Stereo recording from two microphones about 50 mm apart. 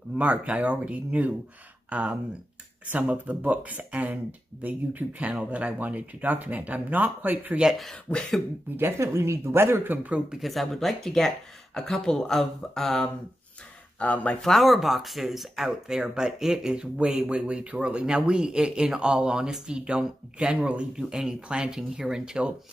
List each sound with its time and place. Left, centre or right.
0.2 s speech: right
8.1 s cough: left
8.9 s speech: right
10.4 s speech: centre
13.9 s speech: left
14.4 s speech: centre; by 20.8 s right
20.9 s speech: centre